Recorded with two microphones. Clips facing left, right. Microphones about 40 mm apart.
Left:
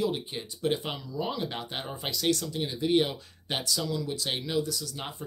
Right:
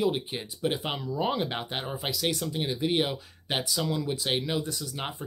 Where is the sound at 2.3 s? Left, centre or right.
Centre.